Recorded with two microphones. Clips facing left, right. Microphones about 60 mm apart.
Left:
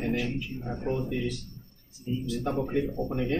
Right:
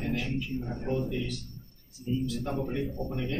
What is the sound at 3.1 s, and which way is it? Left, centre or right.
Speech, left.